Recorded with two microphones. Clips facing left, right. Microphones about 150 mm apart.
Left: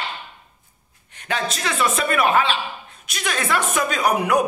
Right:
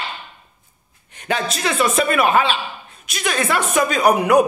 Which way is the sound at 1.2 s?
10° right (ahead or behind).